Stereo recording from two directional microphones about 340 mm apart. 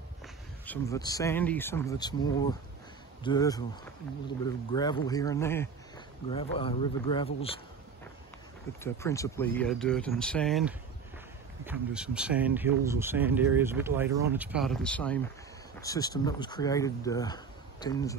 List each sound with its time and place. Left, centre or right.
0.7 s speech: centre
4.7 s speech: centre
8.8 s speech: centre